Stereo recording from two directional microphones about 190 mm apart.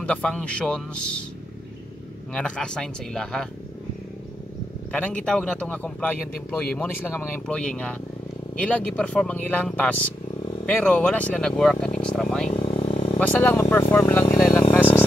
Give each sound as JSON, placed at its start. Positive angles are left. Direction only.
{"t": 0.0, "sound": "a man's voice", "side_deg": 5}
{"t": 2.3, "sound": "a man's voice", "side_deg": 5}
{"t": 4.9, "sound": "a man's voice", "side_deg": 5}
{"t": 12.4, "sound": "vehicle", "side_deg": 30}
{"t": 13.2, "sound": "speech", "side_deg": 10}
{"t": 14.7, "sound": "a sound", "side_deg": 10}